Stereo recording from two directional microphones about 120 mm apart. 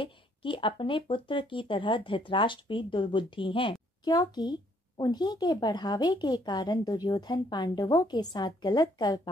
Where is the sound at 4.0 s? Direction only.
35° left (ahead or behind).